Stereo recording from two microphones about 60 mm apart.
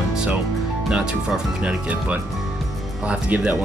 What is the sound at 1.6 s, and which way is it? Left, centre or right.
Speech, right.